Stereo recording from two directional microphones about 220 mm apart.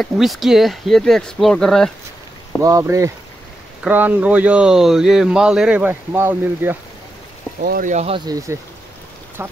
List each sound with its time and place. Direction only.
0.0 s speech: centre (ahead or behind)
2.6 s speech: 15° right (ahead or behind)
7.6 s speech: 40° right (ahead or behind)
8.3 s speech: 15° right (ahead or behind)